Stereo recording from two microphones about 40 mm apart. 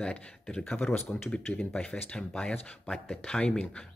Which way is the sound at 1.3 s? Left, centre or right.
Left.